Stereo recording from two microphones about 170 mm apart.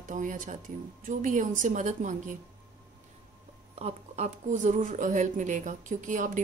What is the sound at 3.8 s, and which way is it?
Speech, 40° right (ahead or behind).